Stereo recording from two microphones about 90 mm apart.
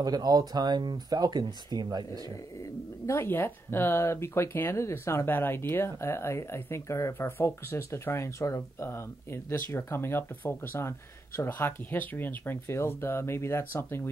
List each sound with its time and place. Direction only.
0.0 s speech: 45° right (ahead or behind)
2.6 s speech: 30° left (ahead or behind)